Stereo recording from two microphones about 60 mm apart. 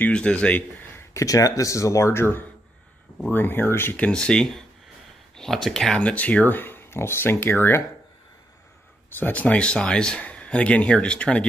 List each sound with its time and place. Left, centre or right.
0.1 s speech: centre
1.1 s speech: left
4.1 s speech: centre
5.9 s speech: left
9.2 s speech: left